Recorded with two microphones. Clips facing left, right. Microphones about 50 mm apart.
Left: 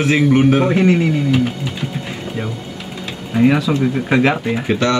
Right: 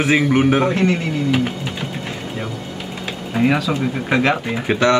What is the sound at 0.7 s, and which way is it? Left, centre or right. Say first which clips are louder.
Speech: left 4 dB; centre.